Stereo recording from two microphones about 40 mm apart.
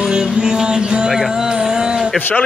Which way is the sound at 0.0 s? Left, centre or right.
Centre.